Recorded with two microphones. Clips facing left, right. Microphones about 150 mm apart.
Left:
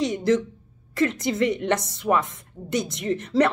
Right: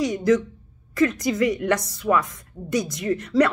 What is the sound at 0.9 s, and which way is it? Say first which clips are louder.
Speech: right 2 dB; 25° left (ahead or behind).